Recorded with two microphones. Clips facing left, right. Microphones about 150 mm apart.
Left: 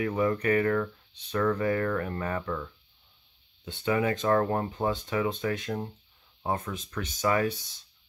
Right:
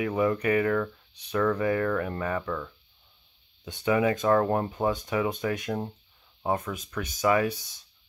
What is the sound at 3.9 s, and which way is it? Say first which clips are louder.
Speech: right 2 dB; 20° right (ahead or behind).